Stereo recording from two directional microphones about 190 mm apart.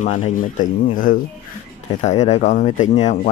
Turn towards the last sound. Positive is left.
turn(degrees=40)  # may be behind; listen again after turning